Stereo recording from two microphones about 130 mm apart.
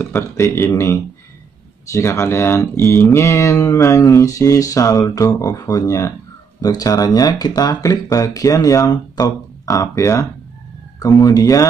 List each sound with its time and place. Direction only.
0.0 s speech: 20° left (ahead or behind)